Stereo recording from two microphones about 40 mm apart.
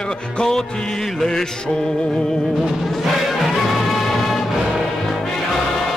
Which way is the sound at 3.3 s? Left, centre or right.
Centre.